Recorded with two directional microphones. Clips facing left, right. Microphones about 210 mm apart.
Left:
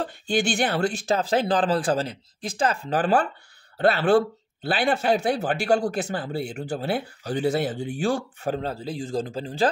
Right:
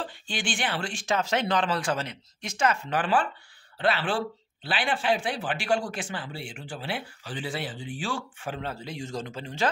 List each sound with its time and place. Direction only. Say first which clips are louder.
0.0 s speech: left 9 dB; 45° left (ahead or behind)